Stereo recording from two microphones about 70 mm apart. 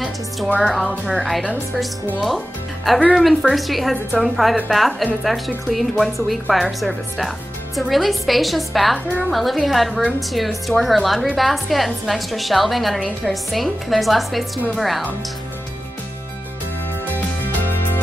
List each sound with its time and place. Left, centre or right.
0.6 s a woman's voice: centre
17.1 s music: left